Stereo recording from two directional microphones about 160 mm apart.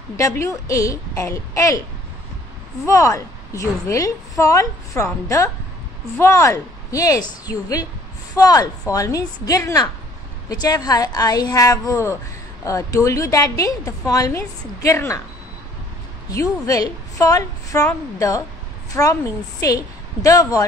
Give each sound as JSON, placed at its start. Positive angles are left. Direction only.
{"t": 0.2, "sound": "a woman's voice", "side_deg": 20}
{"t": 2.8, "sound": "a woman's voice", "side_deg": 20}
{"t": 16.3, "sound": "a woman's voice", "side_deg": 20}
{"t": 18.9, "sound": "a woman's voice", "side_deg": 20}